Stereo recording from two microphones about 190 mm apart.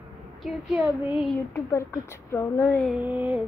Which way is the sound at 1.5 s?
15° left (ahead or behind).